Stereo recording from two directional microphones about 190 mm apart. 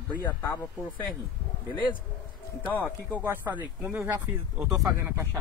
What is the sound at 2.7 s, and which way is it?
Speech, 10° left (ahead or behind).